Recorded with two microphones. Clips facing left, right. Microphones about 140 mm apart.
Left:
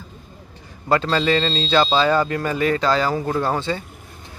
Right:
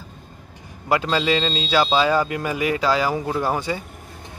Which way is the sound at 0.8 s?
10° right (ahead or behind).